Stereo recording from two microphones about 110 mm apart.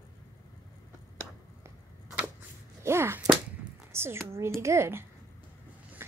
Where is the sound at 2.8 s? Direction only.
25° right (ahead or behind).